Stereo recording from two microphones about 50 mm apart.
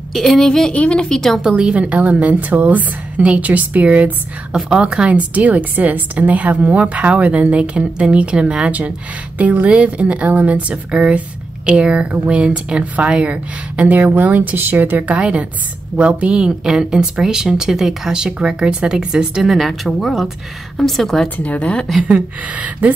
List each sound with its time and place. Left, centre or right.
0.1 s speech: centre
0.7 s speech: left
1.0 s speech: centre
1.6 s speech: right
4.6 s speech: centre
9.4 s speech: right
9.7 s speech: right; by 21.3 s centre
21.4 s speech: left
22.0 s speech: right